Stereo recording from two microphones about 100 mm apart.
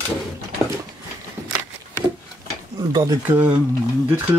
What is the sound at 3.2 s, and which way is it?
Speech, 20° right (ahead or behind).